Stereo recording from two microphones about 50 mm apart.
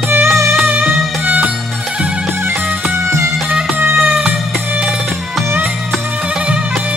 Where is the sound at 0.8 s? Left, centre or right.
Right.